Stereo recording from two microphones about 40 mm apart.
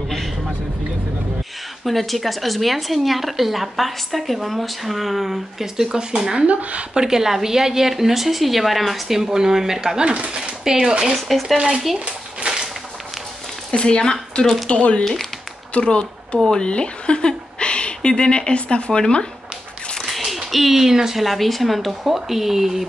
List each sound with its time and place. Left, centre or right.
1.9 s a woman's voice: centre
11.1 s speech: centre
11.5 s speech: centre
12.4 s a sound: right
13.7 s speech: left
14.7 s a woman's voice: left
20.0 s speech: centre